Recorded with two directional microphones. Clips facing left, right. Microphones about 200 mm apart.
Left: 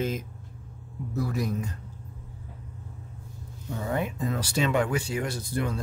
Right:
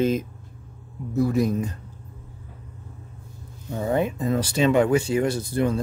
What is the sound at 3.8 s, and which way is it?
Speech, 25° right (ahead or behind).